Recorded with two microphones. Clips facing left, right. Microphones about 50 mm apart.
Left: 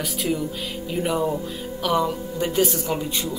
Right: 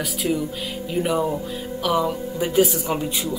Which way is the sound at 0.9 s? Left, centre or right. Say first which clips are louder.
Right 1 dB; centre.